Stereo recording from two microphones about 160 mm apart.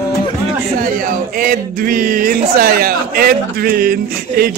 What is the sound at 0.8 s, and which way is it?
Speech, 60° right (ahead or behind).